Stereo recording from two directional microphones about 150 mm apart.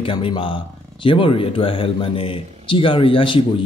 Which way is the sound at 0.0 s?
35° left (ahead or behind).